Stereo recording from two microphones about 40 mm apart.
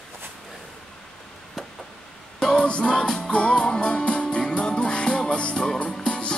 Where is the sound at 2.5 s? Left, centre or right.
Left.